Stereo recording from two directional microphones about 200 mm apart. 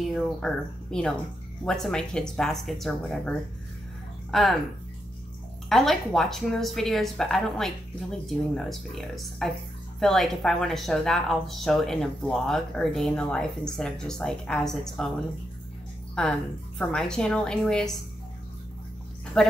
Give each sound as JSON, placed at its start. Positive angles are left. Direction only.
{"t": 0.0, "sound": "a woman's voice", "side_deg": 0}
{"t": 5.7, "sound": "a woman's voice", "side_deg": 0}
{"t": 16.2, "sound": "a woman's voice", "side_deg": 5}
{"t": 19.4, "sound": "a woman's voice", "side_deg": 5}